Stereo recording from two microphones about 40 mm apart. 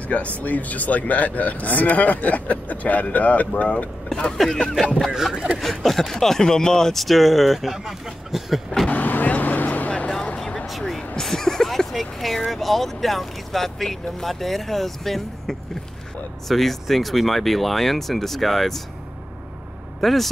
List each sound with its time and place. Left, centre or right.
0.1 s speech: left
4.4 s speech: centre
5.1 s speech: centre
5.6 s speech: centre
7.0 s speech: centre
8.8 s vehicle: left
10.9 s a sound: centre
12.4 s speech: centre
20.0 s speech: centre